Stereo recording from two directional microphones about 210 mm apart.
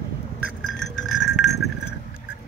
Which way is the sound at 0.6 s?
Centre (ahead or behind).